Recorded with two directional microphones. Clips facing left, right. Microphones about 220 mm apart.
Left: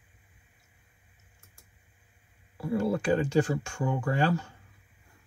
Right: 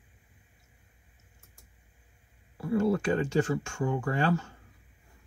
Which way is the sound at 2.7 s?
35° left (ahead or behind).